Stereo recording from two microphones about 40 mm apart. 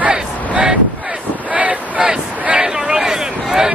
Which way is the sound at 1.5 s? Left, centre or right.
Right.